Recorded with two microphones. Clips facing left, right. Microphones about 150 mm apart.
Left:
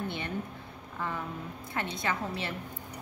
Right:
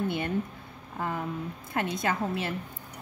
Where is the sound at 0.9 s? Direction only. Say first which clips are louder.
Right 3 dB; 45° right (ahead or behind).